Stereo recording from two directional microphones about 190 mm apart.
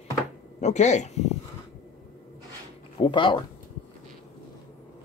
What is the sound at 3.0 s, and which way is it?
Speech, 25° left (ahead or behind).